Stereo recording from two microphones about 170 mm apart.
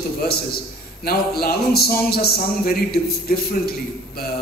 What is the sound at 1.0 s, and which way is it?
A man's voice, 65° left (ahead or behind).